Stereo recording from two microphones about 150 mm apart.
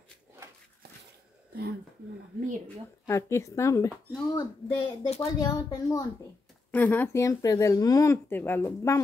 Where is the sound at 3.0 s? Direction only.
20° left (ahead or behind).